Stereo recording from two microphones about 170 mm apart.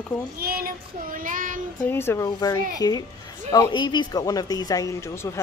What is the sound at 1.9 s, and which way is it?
Speech, 15° left (ahead or behind).